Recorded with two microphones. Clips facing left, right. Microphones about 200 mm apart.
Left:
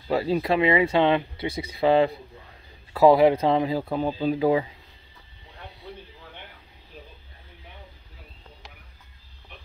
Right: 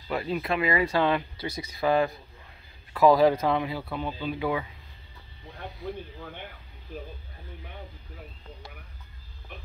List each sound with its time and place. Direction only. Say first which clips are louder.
0.1 s speech: left 6 dB; 30° left (ahead or behind)